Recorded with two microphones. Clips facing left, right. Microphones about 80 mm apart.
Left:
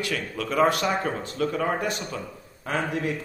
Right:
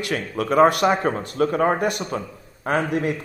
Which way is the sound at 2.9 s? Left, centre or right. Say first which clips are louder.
Right 5 dB; right.